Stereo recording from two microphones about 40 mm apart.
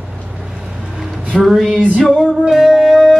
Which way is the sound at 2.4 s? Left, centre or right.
Centre.